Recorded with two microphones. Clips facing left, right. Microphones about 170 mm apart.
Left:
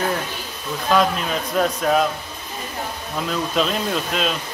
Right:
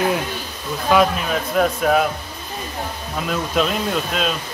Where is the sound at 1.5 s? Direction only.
5° right (ahead or behind).